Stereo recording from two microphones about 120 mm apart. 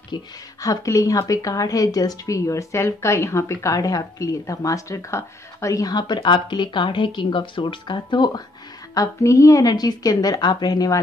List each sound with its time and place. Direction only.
0.1 s speech: 30° left (ahead or behind)
8.9 s a woman's voice: 25° left (ahead or behind)